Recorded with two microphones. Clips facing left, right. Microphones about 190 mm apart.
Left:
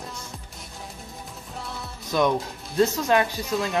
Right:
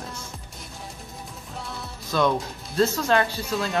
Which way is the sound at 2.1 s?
15° left (ahead or behind).